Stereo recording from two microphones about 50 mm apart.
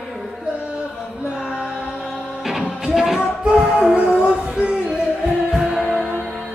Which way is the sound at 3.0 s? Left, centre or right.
Centre.